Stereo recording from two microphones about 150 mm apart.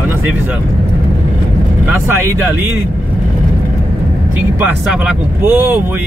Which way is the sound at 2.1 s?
15° right (ahead or behind).